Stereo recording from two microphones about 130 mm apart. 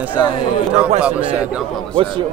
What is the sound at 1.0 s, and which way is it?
Speech, 10° right (ahead or behind).